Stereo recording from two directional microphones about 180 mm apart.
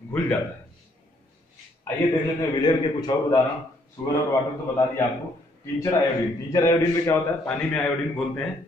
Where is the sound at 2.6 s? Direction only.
20° left (ahead or behind).